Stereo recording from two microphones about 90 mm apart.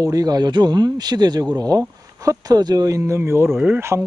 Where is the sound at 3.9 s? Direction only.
15° right (ahead or behind).